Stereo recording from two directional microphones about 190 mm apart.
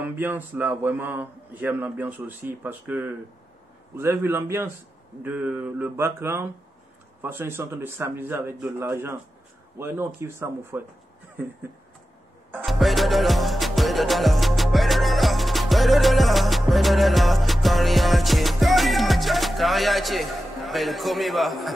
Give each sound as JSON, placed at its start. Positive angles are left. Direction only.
{"t": 0.0, "sound": "a man's voice", "side_deg": -10}
{"t": 12.6, "sound": "music", "side_deg": 0}